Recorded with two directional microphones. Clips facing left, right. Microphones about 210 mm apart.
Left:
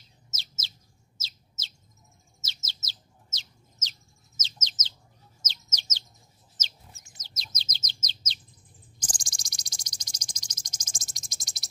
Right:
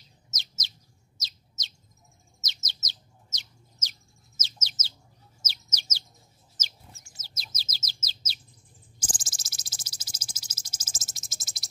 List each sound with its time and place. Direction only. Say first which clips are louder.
0.3 s bird: right 1 dB; 15° right (ahead or behind)
2.4 s bird: right 1 dB; 20° right (ahead or behind)
6.5 s chicken: right 1 dB; 10° right (ahead or behind)
7.2 s bird: left 1 dB; 10° right (ahead or behind)
9.0 s cricket: right 3 dB; 5° right (ahead or behind)